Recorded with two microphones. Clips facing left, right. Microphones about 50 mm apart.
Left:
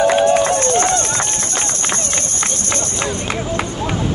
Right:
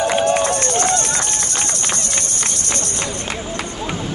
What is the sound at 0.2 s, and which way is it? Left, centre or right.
Run, left.